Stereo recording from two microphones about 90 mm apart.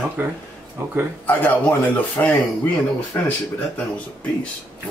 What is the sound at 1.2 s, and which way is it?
Speech, 20° left (ahead or behind).